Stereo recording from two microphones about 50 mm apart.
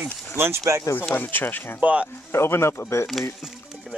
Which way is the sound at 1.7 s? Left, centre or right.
Right.